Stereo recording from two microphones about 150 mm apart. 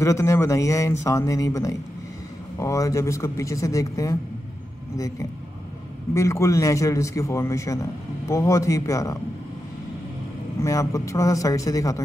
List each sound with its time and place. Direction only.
0.0 s a man's voice: 20° left (ahead or behind)
6.1 s a man's voice: 20° left (ahead or behind)
10.6 s a man's voice: 20° left (ahead or behind)